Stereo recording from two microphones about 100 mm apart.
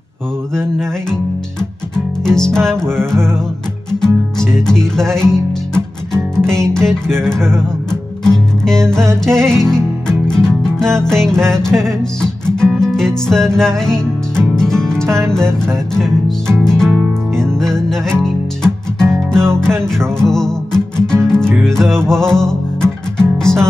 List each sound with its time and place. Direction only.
0.6 s music: 5° left (ahead or behind)
2.2 s music: 5° left (ahead or behind)
4.0 s speech: 5° left (ahead or behind)
6.3 s music: 5° left (ahead or behind)
15.0 s music: 30° right (ahead or behind)
16.0 s music: 5° left (ahead or behind)